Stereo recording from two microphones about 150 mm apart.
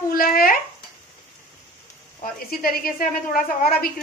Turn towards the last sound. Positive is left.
turn(degrees=75)  # may be behind; listen again after turning